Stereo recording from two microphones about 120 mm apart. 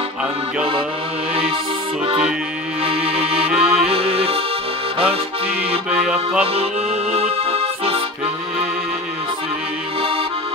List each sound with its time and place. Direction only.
3.0 s music: 10° right (ahead or behind)
3.9 s music: 55° right (ahead or behind)
6.4 s accordion: 55° right (ahead or behind)